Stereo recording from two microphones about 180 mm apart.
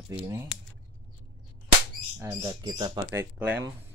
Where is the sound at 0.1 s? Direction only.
10° right (ahead or behind).